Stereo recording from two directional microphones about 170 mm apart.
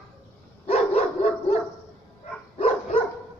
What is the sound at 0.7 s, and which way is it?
Dog, 40° left (ahead or behind).